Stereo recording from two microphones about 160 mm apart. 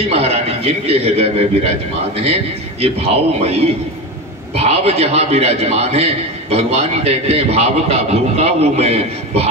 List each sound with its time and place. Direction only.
0.1 s a man's voice: 40° right (ahead or behind)
2.8 s a man's voice: 40° right (ahead or behind)
4.6 s a man's voice: 40° right (ahead or behind)